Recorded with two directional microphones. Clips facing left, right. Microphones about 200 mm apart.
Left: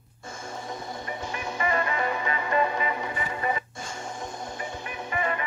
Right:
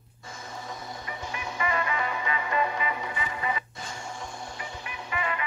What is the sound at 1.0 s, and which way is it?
Music, 45° left (ahead or behind).